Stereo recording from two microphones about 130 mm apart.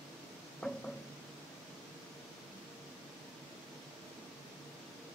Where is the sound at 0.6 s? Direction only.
5° left (ahead or behind).